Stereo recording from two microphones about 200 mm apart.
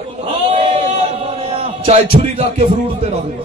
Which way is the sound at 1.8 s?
30° right (ahead or behind).